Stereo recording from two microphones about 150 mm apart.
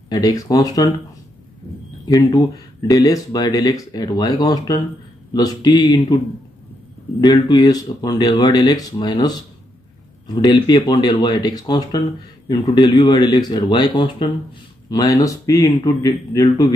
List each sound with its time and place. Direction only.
0.1 s speech: 25° left (ahead or behind)
2.0 s speech: 25° left (ahead or behind)
7.2 s speech: 25° left (ahead or behind)